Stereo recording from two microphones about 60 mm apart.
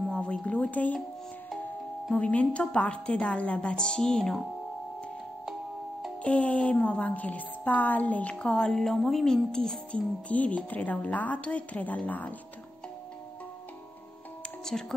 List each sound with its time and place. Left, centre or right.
0.1 s speech: centre
2.1 s a woman's voice: left
6.2 s a woman's voice: left
14.7 s speech: centre